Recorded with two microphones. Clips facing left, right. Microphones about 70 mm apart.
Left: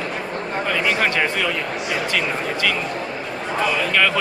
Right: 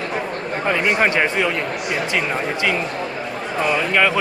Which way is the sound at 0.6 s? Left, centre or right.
Centre.